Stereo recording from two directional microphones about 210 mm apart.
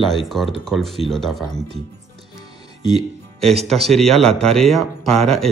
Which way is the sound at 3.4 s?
Centre (ahead or behind).